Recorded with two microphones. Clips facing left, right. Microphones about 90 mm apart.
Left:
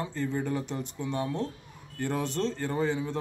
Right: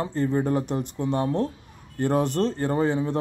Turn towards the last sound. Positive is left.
turn(degrees=-50)  # may be behind; listen again after turning